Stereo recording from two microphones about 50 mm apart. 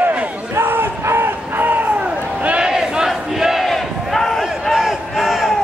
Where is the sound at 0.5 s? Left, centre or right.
Right.